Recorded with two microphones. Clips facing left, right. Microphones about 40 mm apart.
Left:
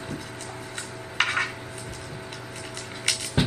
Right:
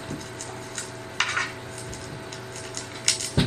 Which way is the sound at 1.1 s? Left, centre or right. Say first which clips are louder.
Left 2 dB; centre.